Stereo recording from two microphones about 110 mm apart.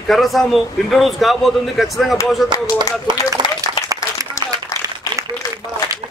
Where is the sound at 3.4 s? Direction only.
45° right (ahead or behind).